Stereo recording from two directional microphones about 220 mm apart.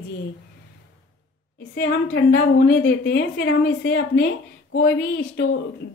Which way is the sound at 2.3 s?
45° left (ahead or behind).